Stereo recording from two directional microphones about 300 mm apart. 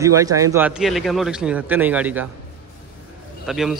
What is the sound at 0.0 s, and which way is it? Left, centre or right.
Speech, centre.